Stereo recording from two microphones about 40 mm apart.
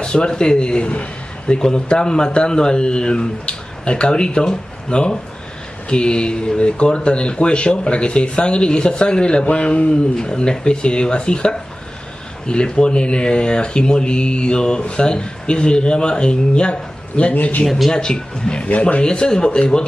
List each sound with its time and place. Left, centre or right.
0.0 s speech: left
17.3 s a man's voice: left
17.6 s speech: centre
17.9 s a man's voice: centre
19.0 s speech: centre